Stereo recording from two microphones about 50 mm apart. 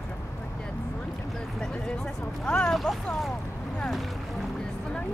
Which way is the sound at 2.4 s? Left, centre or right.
Centre.